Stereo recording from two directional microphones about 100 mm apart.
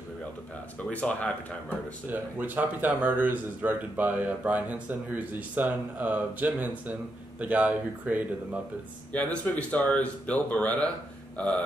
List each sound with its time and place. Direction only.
0.9 s speech: 10° left (ahead or behind)
2.0 s a man's voice: 20° right (ahead or behind)
9.1 s speech: 10° left (ahead or behind)